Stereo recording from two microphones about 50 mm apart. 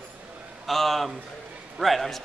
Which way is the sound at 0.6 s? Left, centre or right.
Centre.